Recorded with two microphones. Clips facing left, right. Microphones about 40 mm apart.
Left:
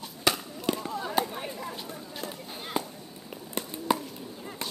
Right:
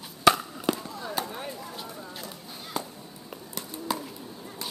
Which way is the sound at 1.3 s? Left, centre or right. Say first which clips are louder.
Even; centre.